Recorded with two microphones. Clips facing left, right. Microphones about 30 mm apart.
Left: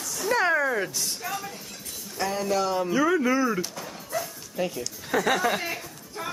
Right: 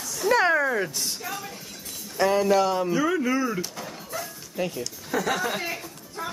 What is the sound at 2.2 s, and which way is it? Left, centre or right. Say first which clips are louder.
Speech: right 5 dB; centre.